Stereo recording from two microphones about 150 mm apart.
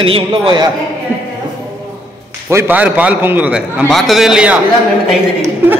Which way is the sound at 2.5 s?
15° right (ahead or behind).